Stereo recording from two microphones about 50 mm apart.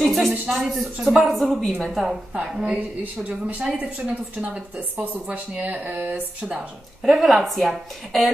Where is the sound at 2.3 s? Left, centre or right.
Centre.